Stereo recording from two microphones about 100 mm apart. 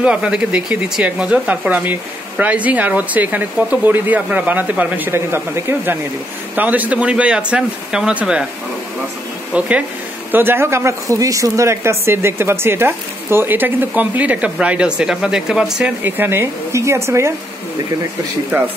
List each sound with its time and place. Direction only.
0.0 s speech: 10° right (ahead or behind)
9.5 s speech: 15° right (ahead or behind)
16.0 s speech: 20° right (ahead or behind)
18.5 s speech: 25° right (ahead or behind)